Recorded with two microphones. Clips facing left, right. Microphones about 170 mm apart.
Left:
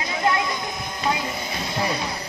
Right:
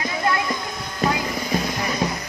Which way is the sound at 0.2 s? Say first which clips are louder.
Left 1 dB; 20° left (ahead or behind).